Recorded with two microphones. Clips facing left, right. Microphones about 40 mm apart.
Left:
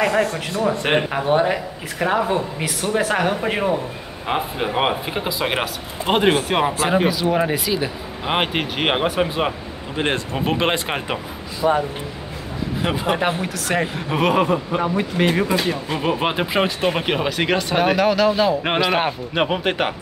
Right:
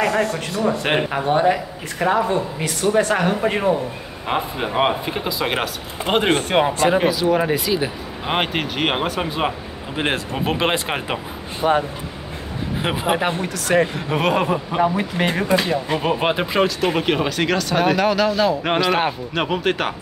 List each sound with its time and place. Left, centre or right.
0.0 s speech: centre
11.6 s speech: right
12.8 s speech: centre
13.2 s a man's voice: centre
17.5 s speech: left
17.7 s a man's voice: centre